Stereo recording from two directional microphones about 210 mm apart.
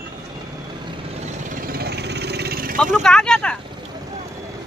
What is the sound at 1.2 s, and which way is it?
Vehicle, 40° right (ahead or behind).